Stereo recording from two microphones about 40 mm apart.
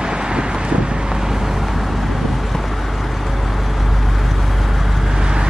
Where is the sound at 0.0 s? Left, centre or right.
Right.